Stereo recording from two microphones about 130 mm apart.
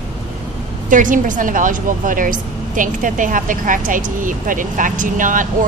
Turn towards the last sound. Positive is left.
turn(degrees=-90)